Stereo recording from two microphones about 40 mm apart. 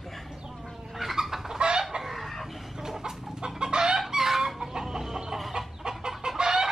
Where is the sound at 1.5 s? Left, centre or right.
Right.